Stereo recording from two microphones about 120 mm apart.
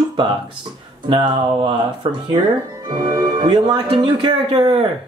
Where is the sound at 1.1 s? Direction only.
45° right (ahead or behind).